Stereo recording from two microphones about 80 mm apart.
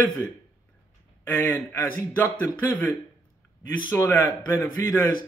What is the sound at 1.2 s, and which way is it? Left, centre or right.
A man's voice, left.